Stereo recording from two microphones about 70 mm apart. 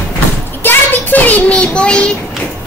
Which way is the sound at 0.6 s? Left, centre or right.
Left.